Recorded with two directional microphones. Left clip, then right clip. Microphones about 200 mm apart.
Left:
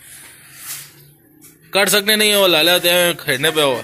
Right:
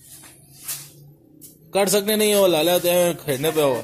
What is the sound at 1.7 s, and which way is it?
A man's voice, 10° right (ahead or behind).